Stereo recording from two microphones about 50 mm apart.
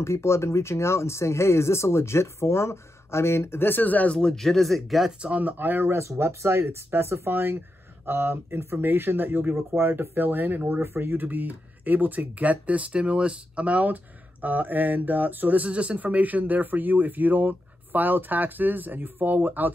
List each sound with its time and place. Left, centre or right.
0.0 s speech: left
4.3 s speech: centre
5.2 s speech: right
6.0 s speech: right
9.6 s speech: right
11.1 s speech: right